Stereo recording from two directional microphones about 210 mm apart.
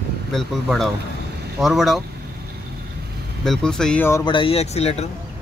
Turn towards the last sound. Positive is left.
turn(degrees=30)  # may be behind; listen again after turning